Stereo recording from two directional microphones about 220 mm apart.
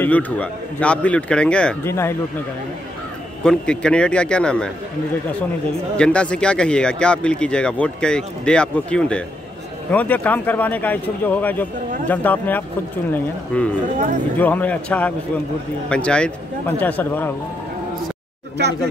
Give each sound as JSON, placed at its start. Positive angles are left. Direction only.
{"t": 0.0, "sound": "speech", "side_deg": 5}
{"t": 3.4, "sound": "speech", "side_deg": 5}
{"t": 5.9, "sound": "speech", "side_deg": 5}
{"t": 13.9, "sound": "speech", "side_deg": -35}
{"t": 14.4, "sound": "speech", "side_deg": 5}